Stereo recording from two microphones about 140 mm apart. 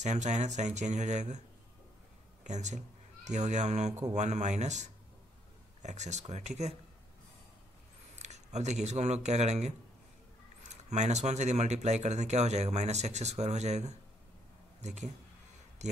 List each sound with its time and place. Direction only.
0.0 s speech: 55° right (ahead or behind)
2.4 s speech: 55° right (ahead or behind)
8.2 s speech: 55° right (ahead or behind)